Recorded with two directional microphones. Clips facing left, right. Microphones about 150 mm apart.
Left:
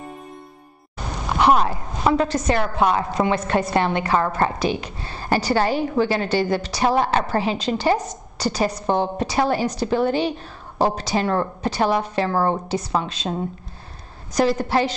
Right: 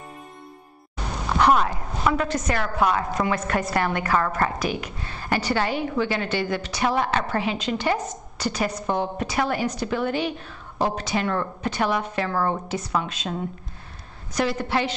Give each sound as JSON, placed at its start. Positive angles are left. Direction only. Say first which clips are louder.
{"t": 1.6, "sound": "a woman's voice", "louder": "left 3 dB", "side_deg": 30}